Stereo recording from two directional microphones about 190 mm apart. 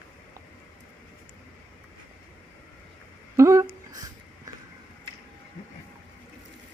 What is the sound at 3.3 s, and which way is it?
Humming, 15° right (ahead or behind).